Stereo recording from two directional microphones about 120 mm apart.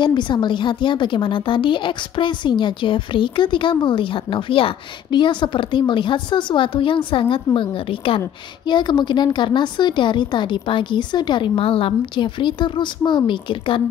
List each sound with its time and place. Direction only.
0.0 s a woman's voice: 40° left (ahead or behind)
8.6 s a woman's voice: 40° left (ahead or behind)